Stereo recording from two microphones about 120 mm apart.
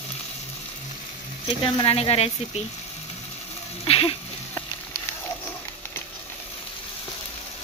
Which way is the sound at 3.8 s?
55° left (ahead or behind).